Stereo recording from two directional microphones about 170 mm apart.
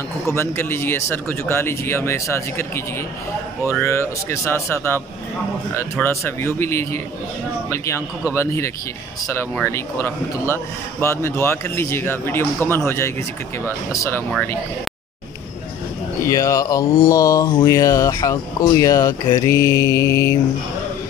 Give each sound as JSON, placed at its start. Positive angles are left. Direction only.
{"t": 0.3, "sound": "a man's voice", "side_deg": 15}
{"t": 3.8, "sound": "a man's voice", "side_deg": 15}
{"t": 16.3, "sound": "speech", "side_deg": 20}